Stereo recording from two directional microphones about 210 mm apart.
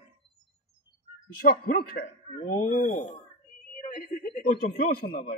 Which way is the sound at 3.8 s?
40° left (ahead or behind).